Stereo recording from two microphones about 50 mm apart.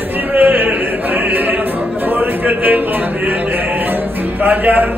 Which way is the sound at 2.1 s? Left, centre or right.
Right.